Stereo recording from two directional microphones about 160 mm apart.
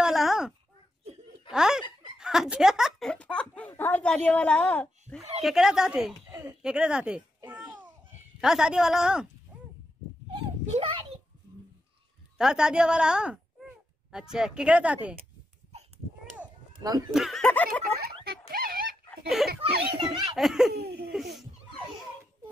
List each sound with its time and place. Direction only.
0.0 s a sound: centre (ahead or behind)
1.5 s a woman's voice: 5° right (ahead or behind)
5.4 s a woman's voice: 5° right (ahead or behind)
6.6 s a sound: 5° right (ahead or behind)
8.4 s a woman's voice: 5° right (ahead or behind)
10.7 s a child's voice: 35° right (ahead or behind)
12.4 s speech: 5° right (ahead or behind)
16.7 s a sound: 25° right (ahead or behind)
17.1 s a woman's voice: centre (ahead or behind)
18.0 s a sound: 75° right (ahead or behind)
19.0 s chuckle: centre (ahead or behind)
20.1 s a woman's voice: centre (ahead or behind)
20.7 s laughter: 80° right
21.1 s a woman's voice: centre (ahead or behind)